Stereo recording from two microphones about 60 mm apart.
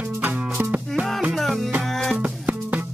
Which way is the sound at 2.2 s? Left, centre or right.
Right.